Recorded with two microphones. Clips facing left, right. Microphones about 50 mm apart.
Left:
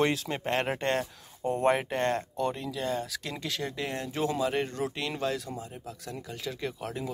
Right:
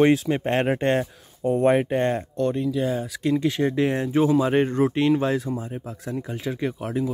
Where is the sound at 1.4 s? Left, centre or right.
Centre.